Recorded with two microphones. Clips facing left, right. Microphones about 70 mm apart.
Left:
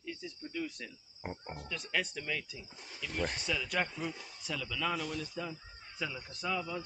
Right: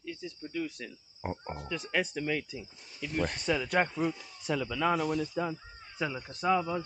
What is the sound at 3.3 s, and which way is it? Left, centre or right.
Speech, right.